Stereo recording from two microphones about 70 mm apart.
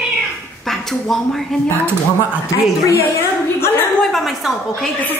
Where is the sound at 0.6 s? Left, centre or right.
Centre.